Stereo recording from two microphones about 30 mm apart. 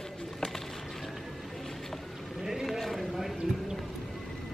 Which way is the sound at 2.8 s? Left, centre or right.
Centre.